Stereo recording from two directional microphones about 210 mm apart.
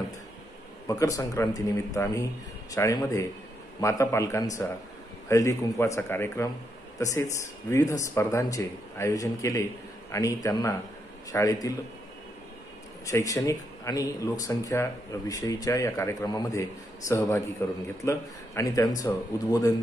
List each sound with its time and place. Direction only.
0.8 s speech: 15° left (ahead or behind)
13.0 s speech: 15° left (ahead or behind)